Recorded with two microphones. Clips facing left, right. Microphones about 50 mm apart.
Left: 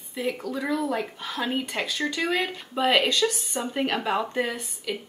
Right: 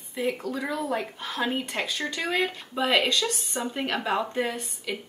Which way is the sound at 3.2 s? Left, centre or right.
Left.